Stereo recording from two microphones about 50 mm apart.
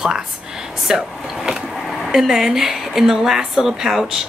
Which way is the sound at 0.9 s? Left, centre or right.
Centre.